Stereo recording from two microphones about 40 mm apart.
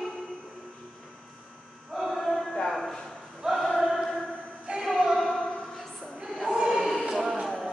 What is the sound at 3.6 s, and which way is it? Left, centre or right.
Choir, centre.